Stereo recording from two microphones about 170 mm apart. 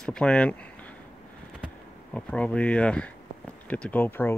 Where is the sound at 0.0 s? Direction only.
5° left (ahead or behind).